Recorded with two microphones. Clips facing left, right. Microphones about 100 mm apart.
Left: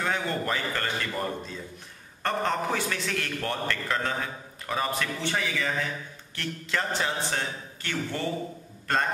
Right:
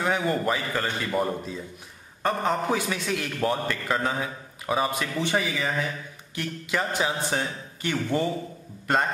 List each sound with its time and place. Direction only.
0.0 s a man's voice: 10° right (ahead or behind)